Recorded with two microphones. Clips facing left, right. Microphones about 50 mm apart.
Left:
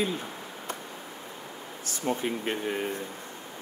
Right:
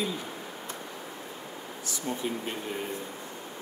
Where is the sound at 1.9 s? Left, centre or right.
Left.